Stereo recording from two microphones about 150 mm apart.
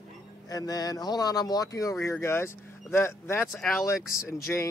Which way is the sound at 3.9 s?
20° left (ahead or behind).